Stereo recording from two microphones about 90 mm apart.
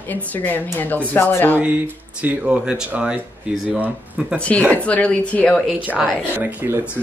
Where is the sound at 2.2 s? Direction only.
10° right (ahead or behind).